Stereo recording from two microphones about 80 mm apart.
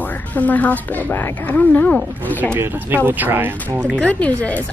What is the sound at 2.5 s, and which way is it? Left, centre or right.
Speech, right.